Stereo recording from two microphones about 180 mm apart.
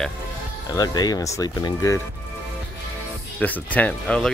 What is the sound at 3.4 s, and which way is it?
Speech, 10° left (ahead or behind).